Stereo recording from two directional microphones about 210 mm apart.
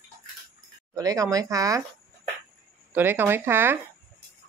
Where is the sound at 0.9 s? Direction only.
15° right (ahead or behind).